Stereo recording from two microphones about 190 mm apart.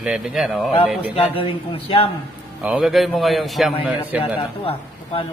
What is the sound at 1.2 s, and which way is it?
Speech, 30° left (ahead or behind).